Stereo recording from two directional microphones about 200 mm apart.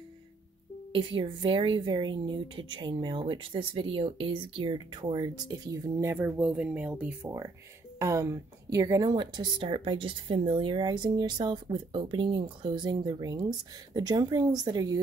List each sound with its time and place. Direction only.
0.9 s speech: 25° right (ahead or behind)